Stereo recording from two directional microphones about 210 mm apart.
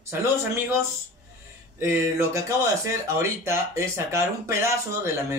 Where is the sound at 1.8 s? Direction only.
15° right (ahead or behind).